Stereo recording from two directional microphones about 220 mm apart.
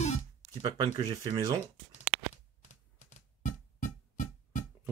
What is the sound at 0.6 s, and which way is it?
Speech, 20° right (ahead or behind).